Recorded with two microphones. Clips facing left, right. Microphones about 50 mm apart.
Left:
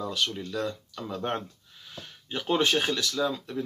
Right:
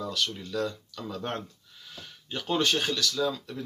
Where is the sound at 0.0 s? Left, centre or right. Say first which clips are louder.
Left 1 dB; centre.